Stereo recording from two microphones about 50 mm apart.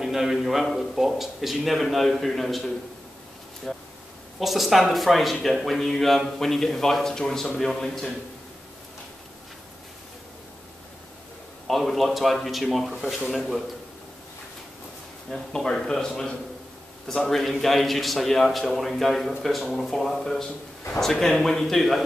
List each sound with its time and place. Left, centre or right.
0.0 s speech: centre
11.6 s speech: centre
12.9 s speech: centre
13.3 s speech: centre
15.2 s speech: centre